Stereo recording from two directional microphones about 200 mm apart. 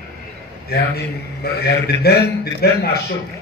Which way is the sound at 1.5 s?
50° left (ahead or behind).